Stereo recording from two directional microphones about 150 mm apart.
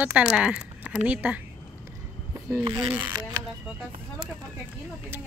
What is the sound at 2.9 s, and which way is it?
Speech, 10° right (ahead or behind).